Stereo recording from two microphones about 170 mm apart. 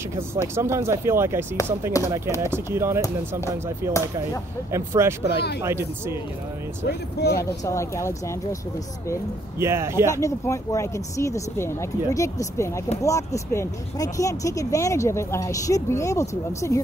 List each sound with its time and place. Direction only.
0.3 s speech: 15° right (ahead or behind)
3.0 s speech: 15° left (ahead or behind)
3.5 s speech: 15° right (ahead or behind)
6.9 s speech: 70° left (ahead or behind)
7.6 s speech: 15° left (ahead or behind)
9.6 s speech: 15° right (ahead or behind)
10.2 s speech: 20° left (ahead or behind)